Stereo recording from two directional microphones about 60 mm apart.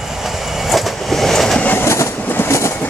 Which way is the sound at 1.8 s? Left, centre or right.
Left.